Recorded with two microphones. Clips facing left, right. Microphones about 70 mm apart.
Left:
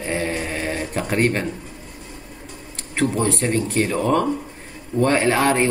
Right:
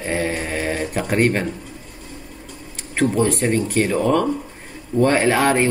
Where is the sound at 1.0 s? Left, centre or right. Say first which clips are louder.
Right 2 dB; centre.